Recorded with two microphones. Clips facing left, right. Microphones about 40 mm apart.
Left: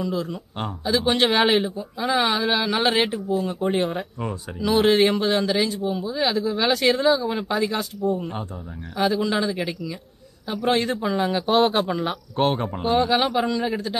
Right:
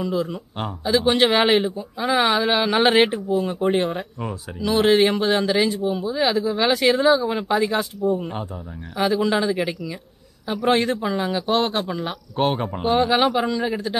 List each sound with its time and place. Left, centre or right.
0.0 s speech: centre
2.6 s speech: right
3.1 s speech: centre